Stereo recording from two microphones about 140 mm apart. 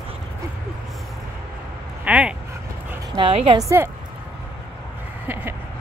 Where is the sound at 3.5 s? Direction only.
20° right (ahead or behind).